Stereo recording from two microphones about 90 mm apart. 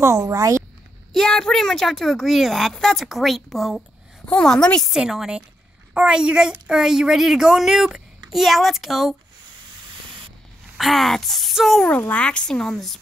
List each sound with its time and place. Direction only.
0.0 s speech: 35° right (ahead or behind)
1.1 s a woman's voice: 5° left (ahead or behind)
4.4 s speech: 10° left (ahead or behind)
4.8 s a woman's voice: 5° right (ahead or behind)
10.8 s a woman's voice: centre (ahead or behind)
11.8 s speech: 15° left (ahead or behind)